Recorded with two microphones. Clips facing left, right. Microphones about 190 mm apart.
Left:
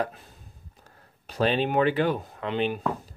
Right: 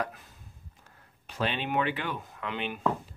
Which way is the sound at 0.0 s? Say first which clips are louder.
Left 4 dB; 30° left (ahead or behind).